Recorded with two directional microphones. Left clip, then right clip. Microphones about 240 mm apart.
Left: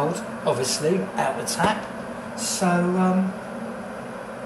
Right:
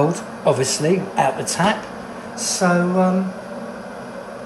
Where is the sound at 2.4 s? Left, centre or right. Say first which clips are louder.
Right 5 dB; right.